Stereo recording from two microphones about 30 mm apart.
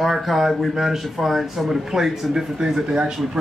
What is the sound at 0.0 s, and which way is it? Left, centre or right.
Speech, centre.